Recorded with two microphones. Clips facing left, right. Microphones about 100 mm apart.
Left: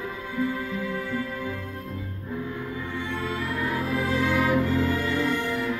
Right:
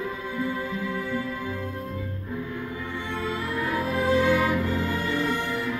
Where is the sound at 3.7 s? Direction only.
15° right (ahead or behind).